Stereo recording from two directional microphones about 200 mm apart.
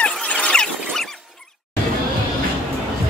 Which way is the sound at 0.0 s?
5° left (ahead or behind).